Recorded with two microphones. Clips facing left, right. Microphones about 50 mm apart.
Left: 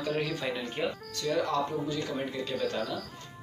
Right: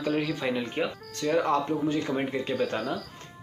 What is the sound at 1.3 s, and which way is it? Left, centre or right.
Speech, right.